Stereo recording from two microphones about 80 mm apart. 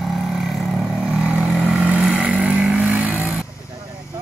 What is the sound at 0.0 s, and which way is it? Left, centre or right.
Vehicle, centre.